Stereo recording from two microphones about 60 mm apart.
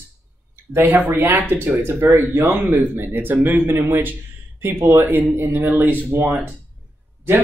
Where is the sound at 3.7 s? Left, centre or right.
Right.